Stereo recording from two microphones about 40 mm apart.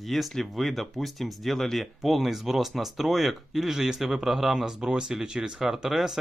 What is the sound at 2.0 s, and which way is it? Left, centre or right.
Speech, centre.